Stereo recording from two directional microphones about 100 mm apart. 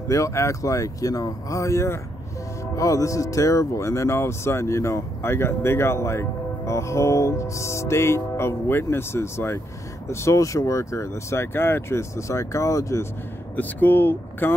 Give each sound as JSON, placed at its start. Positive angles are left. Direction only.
{"t": 0.1, "sound": "speech", "side_deg": 30}
{"t": 13.6, "sound": "speech", "side_deg": 20}